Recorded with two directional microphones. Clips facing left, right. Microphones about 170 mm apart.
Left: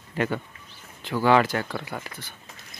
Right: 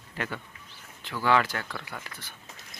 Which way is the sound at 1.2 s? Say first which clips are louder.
Left 5 dB; 20° left (ahead or behind).